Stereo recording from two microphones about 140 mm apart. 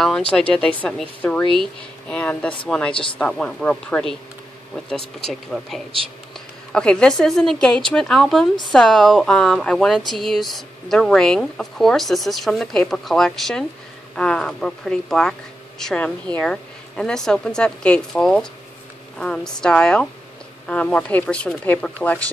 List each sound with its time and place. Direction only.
0.3 s a woman's voice: 5° left (ahead or behind)
2.9 s speech: 40° left (ahead or behind)
3.2 s a woman's voice: 5° left (ahead or behind)